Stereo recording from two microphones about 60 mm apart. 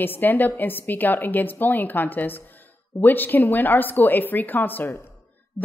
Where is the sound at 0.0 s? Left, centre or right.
Left.